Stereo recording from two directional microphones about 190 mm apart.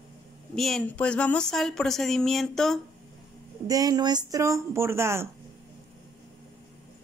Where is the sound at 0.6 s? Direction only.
Centre (ahead or behind).